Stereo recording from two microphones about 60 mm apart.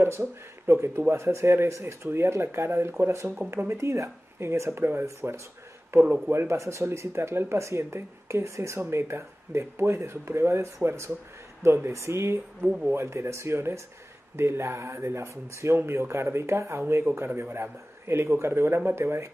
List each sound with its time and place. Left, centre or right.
0.7 s speech: right